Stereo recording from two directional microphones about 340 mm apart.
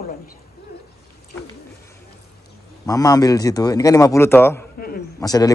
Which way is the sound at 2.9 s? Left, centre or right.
Centre.